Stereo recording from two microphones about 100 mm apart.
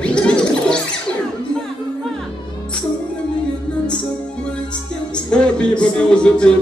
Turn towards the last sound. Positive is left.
turn(degrees=10)  # may be behind; listen again after turning